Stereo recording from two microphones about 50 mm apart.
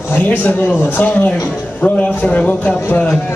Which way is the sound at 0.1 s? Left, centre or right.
Left.